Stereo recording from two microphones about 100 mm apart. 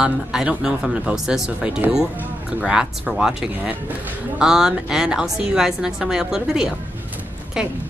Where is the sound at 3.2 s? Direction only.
10° right (ahead or behind).